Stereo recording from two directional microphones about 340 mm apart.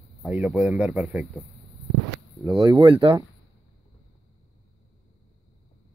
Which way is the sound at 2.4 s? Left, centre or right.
Centre.